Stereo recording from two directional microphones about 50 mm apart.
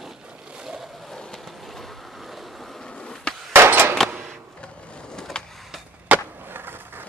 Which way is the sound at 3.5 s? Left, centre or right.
Right.